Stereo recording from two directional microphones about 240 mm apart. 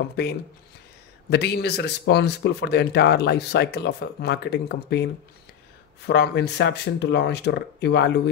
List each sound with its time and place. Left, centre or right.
0.2 s speech: left
6.0 s speech: left